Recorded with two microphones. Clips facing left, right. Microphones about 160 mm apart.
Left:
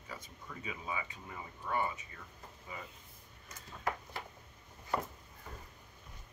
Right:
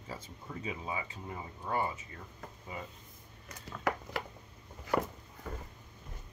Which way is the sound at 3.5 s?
85° right.